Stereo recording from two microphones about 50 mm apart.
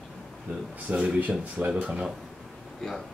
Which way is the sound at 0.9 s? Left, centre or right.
Right.